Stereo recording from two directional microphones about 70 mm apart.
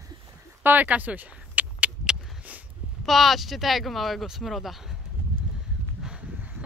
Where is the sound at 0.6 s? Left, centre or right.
Right.